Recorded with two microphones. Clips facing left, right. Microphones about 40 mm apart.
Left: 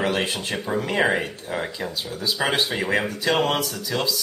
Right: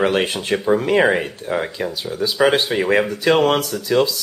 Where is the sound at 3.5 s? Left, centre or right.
Right.